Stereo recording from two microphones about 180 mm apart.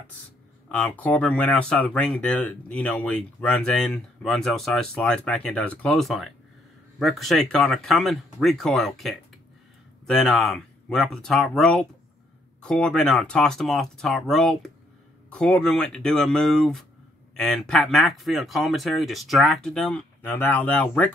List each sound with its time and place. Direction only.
0.7 s speech: 5° left (ahead or behind)